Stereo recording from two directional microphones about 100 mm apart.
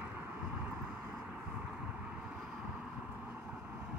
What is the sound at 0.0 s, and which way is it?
Vehicle, 15° right (ahead or behind).